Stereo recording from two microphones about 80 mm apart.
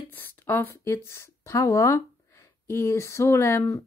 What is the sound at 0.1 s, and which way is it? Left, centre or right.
Speech, left.